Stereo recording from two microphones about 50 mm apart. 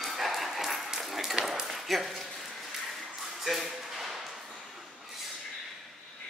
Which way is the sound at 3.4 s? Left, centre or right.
Centre.